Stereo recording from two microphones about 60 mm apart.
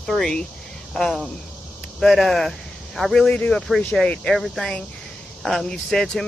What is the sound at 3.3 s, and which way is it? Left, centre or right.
Speech, centre.